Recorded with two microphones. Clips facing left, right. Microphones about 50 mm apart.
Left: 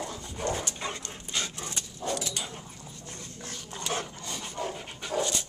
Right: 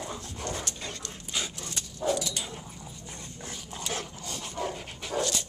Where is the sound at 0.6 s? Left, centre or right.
Centre.